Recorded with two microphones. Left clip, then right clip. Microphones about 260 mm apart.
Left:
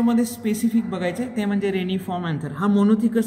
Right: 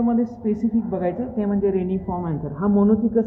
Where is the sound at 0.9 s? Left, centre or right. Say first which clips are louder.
Right 1 dB; left.